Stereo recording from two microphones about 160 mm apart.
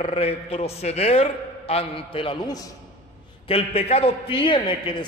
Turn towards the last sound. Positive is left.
turn(degrees=30)  # may be behind; listen again after turning